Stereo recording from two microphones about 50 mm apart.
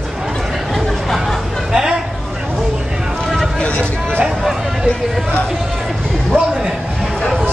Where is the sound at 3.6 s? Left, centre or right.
Left.